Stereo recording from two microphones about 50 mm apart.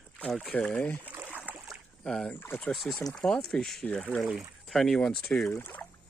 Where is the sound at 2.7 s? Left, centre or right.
Centre.